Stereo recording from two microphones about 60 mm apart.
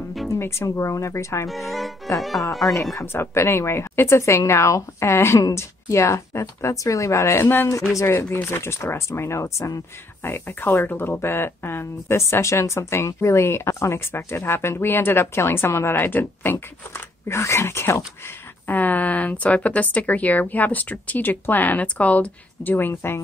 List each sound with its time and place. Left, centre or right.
0.3 s speech: left
0.7 s speech: left
1.5 s speech: centre
2.7 s speech: left
3.1 s speech: left
7.4 s speech: left
8.0 s speech: left
10.2 s speech: left
12.2 s speech: left
18.7 s speech: left